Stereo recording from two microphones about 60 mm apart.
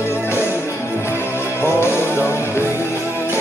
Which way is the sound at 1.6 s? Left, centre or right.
Left.